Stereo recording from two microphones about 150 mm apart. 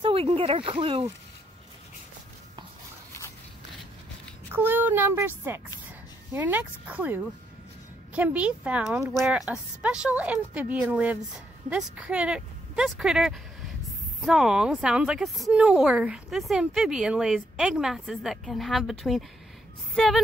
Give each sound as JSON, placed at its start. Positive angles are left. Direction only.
{"t": 0.0, "sound": "speech", "side_deg": -40}
{"t": 4.5, "sound": "a woman's voice", "side_deg": -15}